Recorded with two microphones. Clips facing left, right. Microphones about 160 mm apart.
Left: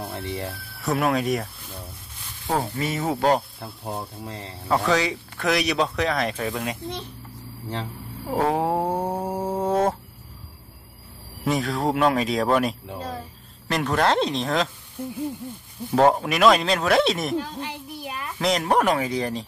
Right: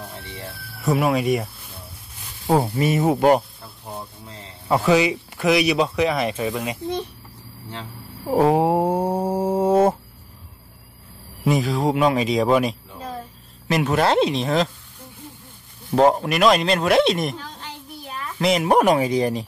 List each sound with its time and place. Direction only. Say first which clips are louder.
0.8 s speech: right 3 dB; 5° right (ahead or behind)
2.4 s speech: right 6 dB; 15° right (ahead or behind)
4.6 s speech: right 4 dB; 5° right (ahead or behind)
8.3 s speech: right 5 dB; 15° right (ahead or behind)
9.2 s music: right 5 dB; 10° right (ahead or behind)
11.4 s speech: right 3 dB; centre (ahead or behind)
15.9 s speech: right 2 dB; 5° right (ahead or behind)
18.4 s speech: right 4 dB; 5° right (ahead or behind)
18.7 s speech: right 5 dB; 20° right (ahead or behind)